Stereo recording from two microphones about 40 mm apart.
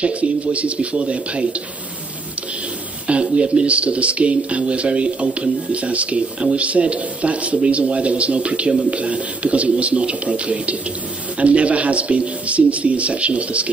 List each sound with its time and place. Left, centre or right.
0.0 s speech: right
3.1 s speech: right